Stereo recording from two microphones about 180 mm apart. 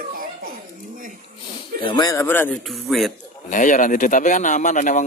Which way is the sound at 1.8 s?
25° left (ahead or behind).